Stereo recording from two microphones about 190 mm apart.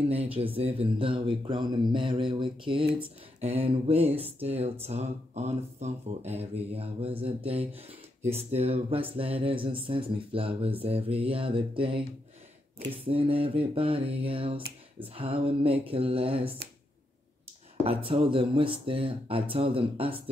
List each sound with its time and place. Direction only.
0.1 s speech: 30° right (ahead or behind)
17.8 s speech: 30° right (ahead or behind)